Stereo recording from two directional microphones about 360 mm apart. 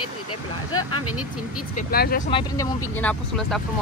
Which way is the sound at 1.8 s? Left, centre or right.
Left.